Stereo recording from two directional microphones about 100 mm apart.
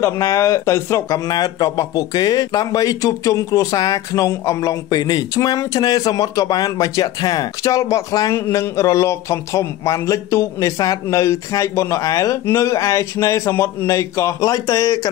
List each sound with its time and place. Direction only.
0.0 s speech: 30° left (ahead or behind)